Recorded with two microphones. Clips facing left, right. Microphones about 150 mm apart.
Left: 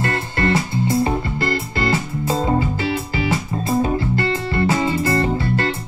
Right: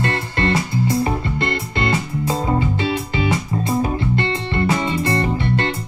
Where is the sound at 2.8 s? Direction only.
25° right (ahead or behind).